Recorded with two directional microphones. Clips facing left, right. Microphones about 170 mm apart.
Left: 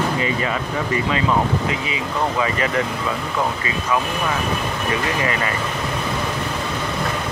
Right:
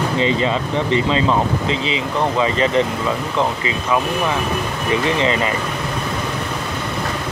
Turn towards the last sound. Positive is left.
turn(degrees=-20)  # may be behind; listen again after turning